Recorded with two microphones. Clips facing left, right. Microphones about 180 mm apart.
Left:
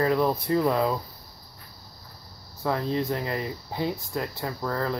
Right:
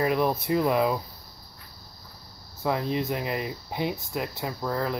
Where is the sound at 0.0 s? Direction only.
15° right (ahead or behind).